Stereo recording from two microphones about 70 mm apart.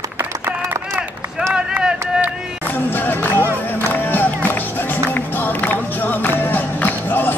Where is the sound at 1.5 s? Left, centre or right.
Centre.